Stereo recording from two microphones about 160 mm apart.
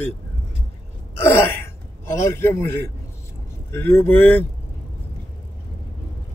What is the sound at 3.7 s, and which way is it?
Speech, 15° left (ahead or behind).